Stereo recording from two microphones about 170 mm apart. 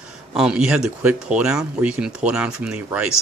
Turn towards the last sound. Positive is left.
turn(degrees=-5)  # may be behind; listen again after turning